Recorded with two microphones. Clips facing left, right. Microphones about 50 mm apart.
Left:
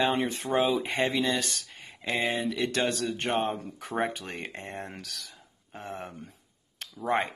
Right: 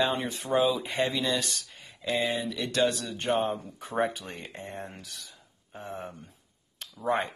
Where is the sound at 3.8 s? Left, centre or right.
Left.